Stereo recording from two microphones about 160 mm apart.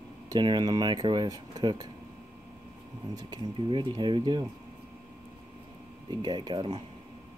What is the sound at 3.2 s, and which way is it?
Speech, 25° right (ahead or behind).